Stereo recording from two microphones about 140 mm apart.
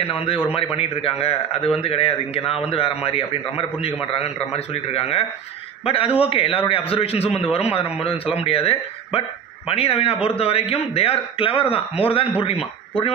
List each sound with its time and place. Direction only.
0.0 s a man's voice: 40° left (ahead or behind)